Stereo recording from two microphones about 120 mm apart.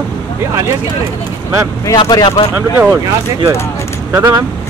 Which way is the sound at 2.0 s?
35° left (ahead or behind).